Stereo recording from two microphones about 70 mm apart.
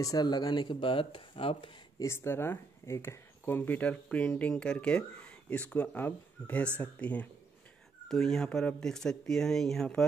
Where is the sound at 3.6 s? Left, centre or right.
Left.